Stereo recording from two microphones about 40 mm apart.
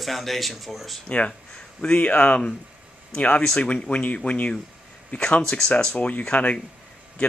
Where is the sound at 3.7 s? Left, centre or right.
Left.